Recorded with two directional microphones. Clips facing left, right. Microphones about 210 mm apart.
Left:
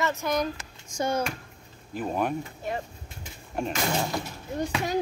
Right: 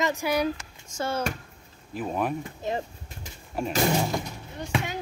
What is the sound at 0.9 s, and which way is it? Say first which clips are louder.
Speech: left 2 dB; 15° left (ahead or behind).